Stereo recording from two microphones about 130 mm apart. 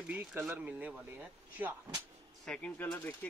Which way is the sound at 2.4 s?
5° left (ahead or behind).